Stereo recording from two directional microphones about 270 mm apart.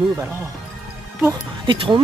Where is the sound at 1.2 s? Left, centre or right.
Centre.